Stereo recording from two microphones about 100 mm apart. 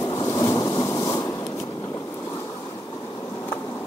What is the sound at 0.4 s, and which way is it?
Thunder, 40° left (ahead or behind).